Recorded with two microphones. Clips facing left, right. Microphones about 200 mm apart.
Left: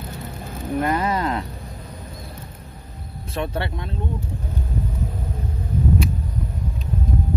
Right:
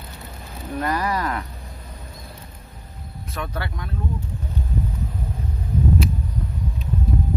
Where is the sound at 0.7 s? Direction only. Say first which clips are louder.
Left 2 dB; 25° left (ahead or behind).